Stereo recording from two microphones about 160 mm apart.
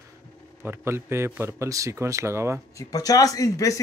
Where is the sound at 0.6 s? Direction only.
15° right (ahead or behind).